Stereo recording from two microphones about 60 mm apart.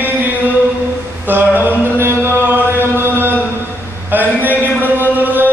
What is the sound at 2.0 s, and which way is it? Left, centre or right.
Chant, right.